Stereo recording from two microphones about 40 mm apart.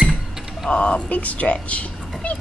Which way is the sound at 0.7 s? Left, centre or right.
Left.